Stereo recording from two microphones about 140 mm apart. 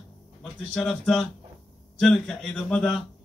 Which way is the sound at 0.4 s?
Centre (ahead or behind).